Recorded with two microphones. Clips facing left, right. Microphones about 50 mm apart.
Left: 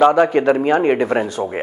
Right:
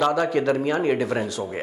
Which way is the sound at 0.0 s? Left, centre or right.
Left.